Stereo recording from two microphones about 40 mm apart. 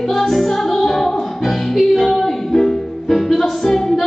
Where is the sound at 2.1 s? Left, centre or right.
Centre.